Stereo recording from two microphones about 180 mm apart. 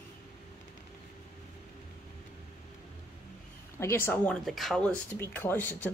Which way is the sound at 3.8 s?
15° left (ahead or behind).